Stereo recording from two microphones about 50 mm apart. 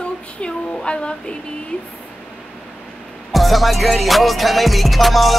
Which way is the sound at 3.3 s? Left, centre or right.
Centre.